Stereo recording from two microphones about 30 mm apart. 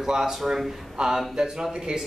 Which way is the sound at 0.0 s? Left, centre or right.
Centre.